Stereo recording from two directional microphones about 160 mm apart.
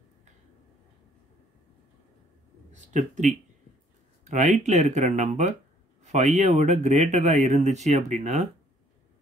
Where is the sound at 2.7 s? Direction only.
50° right (ahead or behind).